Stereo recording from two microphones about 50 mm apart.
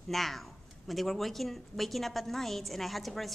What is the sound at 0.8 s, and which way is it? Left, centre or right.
A woman's voice, centre.